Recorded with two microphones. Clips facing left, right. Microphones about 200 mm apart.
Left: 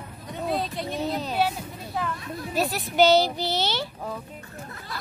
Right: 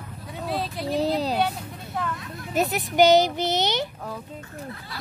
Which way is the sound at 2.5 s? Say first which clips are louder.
Right 3 dB; 20° right (ahead or behind).